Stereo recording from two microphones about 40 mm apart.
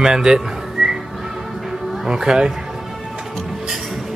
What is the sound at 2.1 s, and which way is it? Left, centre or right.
Speech, centre.